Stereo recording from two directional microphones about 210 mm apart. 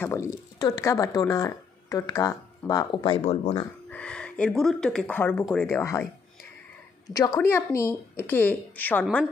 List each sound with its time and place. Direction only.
0.0 s speech: 15° left (ahead or behind)
3.9 s speech: 5° left (ahead or behind)
7.1 s speech: 15° left (ahead or behind)
9.0 s a woman's voice: centre (ahead or behind)